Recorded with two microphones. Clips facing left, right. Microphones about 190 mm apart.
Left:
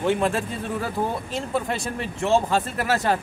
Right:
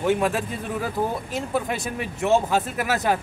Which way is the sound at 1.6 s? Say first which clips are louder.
Even; 10° right (ahead or behind).